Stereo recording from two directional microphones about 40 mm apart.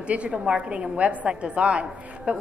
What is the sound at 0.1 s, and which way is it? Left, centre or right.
A woman's voice, right.